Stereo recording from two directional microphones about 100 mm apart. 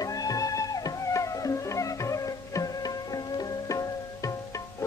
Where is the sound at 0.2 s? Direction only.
35° left (ahead or behind).